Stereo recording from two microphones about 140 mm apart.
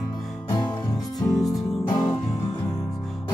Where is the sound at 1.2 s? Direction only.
20° left (ahead or behind).